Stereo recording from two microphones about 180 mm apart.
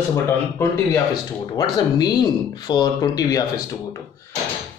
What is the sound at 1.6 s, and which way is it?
Speech, 25° left (ahead or behind).